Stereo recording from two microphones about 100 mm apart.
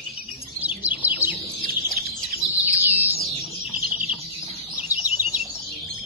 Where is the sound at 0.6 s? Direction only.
15° right (ahead or behind).